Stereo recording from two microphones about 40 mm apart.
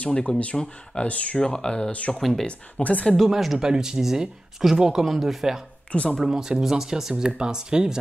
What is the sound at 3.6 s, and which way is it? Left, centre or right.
Speech, centre.